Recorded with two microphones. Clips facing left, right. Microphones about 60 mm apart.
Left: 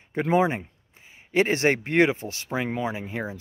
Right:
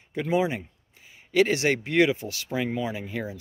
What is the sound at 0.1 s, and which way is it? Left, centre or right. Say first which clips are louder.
Speech: left 3 dB; left.